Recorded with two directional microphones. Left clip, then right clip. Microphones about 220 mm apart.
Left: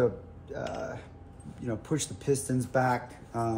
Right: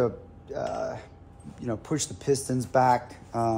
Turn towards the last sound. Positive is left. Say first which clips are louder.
# right 5 dB
turn(degrees=-35)  # may be behind; listen again after turning